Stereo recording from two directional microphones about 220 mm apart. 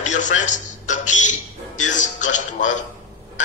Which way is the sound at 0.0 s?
35° left (ahead or behind).